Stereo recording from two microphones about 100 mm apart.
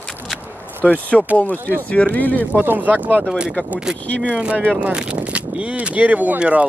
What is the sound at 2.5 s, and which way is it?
Speech, 20° right (ahead or behind).